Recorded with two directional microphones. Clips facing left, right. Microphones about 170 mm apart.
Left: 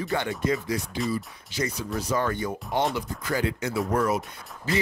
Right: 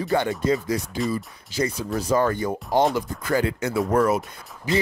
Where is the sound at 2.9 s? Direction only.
50° right (ahead or behind).